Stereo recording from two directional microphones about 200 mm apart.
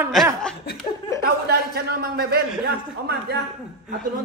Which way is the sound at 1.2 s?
50° right (ahead or behind).